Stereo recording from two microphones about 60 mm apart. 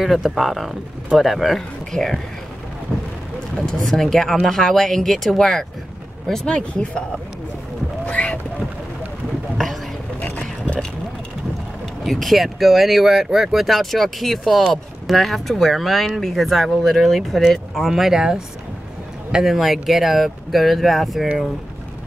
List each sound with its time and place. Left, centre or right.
0.0 s speech: centre
2.9 s a sound: centre
3.6 s speech: centre
6.4 s speech: centre
8.1 s boat: centre
12.0 s speech: centre